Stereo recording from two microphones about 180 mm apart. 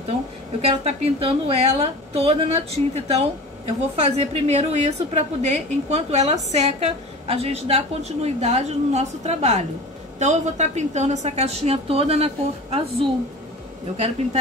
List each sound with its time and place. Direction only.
0.6 s a woman's voice: 35° right (ahead or behind)
13.9 s a woman's voice: 40° right (ahead or behind)